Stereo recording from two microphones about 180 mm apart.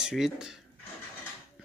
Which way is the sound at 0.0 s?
5° right (ahead or behind).